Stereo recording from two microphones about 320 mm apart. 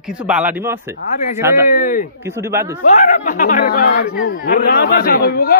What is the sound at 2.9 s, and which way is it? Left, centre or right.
Speech, left.